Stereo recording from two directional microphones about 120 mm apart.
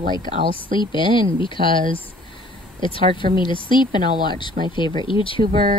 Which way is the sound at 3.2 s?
45° left (ahead or behind).